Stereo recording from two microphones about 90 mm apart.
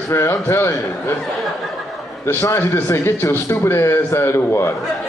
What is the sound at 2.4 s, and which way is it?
A man's voice, 30° left (ahead or behind).